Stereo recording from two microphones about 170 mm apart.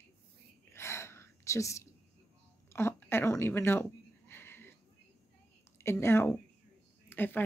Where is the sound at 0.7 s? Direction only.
15° left (ahead or behind).